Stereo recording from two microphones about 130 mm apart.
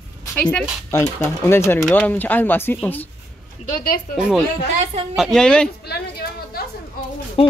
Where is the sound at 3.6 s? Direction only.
85° left.